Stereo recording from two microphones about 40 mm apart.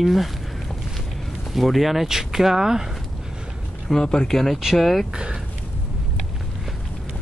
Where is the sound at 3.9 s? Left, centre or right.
Centre.